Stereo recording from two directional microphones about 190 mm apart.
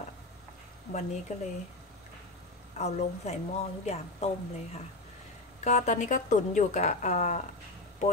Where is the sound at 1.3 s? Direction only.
40° left (ahead or behind).